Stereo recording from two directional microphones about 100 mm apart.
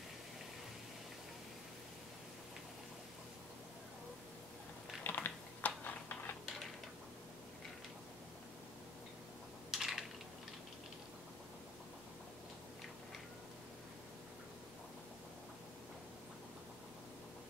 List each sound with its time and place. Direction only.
5.0 s typing: 20° left (ahead or behind)
9.7 s typing: 5° right (ahead or behind)